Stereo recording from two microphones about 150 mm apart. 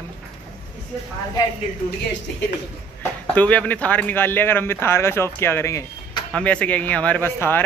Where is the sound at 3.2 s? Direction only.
10° left (ahead or behind).